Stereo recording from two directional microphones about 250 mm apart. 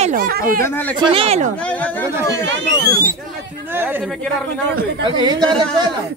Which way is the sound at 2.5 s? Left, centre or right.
Right.